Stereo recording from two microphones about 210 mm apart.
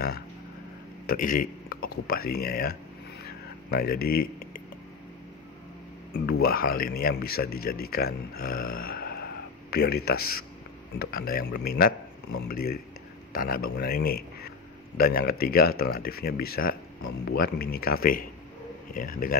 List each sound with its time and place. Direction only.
1.0 s speech: 45° left (ahead or behind)
3.3 s a sound: 45° left (ahead or behind)
6.4 s speech: 45° left (ahead or behind)